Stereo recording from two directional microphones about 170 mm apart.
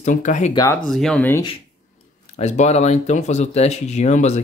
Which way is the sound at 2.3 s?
40° left (ahead or behind).